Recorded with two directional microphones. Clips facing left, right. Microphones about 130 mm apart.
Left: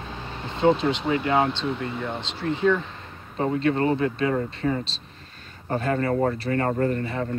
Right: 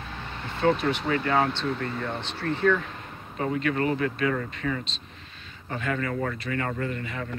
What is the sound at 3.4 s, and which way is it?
Speech, 30° left (ahead or behind).